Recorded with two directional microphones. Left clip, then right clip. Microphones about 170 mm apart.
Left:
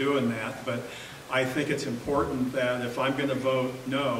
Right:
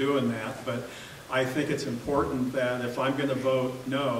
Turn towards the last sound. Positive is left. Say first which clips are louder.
# even
turn(degrees=0)  # may be behind; listen again after turning